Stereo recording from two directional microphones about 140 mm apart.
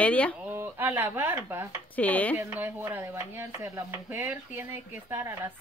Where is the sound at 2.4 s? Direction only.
15° right (ahead or behind).